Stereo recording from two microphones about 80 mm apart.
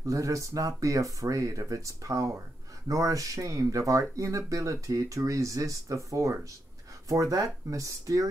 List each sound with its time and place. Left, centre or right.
0.0 s speech: right